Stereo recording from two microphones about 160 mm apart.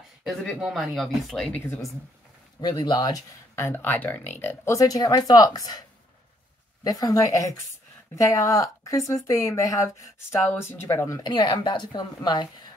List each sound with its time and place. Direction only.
0.2 s speech: centre (ahead or behind)
2.6 s speech: 25° left (ahead or behind)